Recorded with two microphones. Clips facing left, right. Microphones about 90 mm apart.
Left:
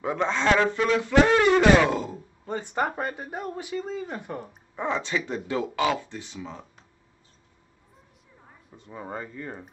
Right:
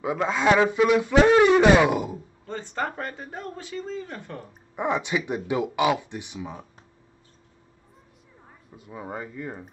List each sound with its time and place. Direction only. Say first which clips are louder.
0.0 s a man's voice: right 2 dB; 5° right (ahead or behind)
2.4 s speech: left 3 dB; 15° left (ahead or behind)
4.7 s a man's voice: right 2 dB; 15° right (ahead or behind)
8.6 s speech: right 1 dB; 5° right (ahead or behind)